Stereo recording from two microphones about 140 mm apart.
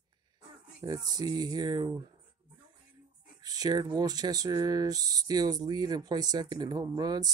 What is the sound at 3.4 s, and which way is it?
Speech, 25° right (ahead or behind).